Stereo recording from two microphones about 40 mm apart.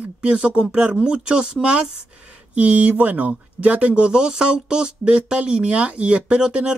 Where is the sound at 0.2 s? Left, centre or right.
Right.